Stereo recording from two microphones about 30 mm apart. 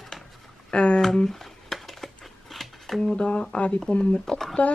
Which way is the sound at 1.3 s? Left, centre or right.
Centre.